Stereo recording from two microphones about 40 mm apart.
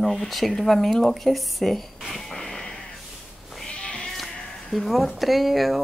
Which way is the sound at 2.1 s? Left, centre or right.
Centre.